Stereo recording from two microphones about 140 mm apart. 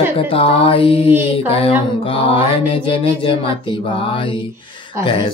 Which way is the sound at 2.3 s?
40° left (ahead or behind).